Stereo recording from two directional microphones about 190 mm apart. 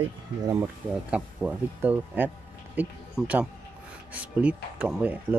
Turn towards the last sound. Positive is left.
turn(degrees=-10)  # may be behind; listen again after turning